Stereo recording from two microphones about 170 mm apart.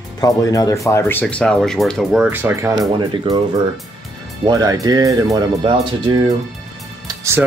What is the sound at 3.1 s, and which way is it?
Speech, 30° right (ahead or behind).